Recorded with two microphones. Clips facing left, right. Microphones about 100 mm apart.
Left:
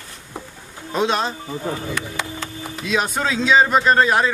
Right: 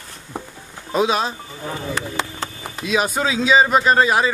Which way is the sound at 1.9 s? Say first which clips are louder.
Right 2 dB; 30° right (ahead or behind).